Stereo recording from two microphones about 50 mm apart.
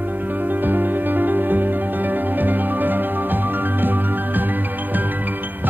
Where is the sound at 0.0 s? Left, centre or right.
Right.